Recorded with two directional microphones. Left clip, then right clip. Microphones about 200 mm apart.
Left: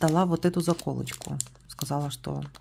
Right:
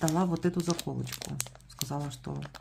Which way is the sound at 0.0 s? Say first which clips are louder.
Left 5 dB; 40° left (ahead or behind).